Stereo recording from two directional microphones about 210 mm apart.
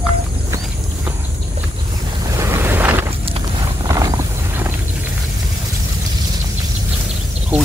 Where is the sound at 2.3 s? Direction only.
10° right (ahead or behind).